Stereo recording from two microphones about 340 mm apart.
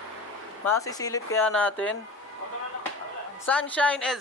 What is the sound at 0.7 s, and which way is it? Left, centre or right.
Speech, centre.